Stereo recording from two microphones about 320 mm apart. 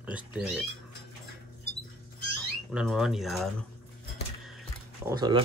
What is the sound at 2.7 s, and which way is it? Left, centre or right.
Speech, centre.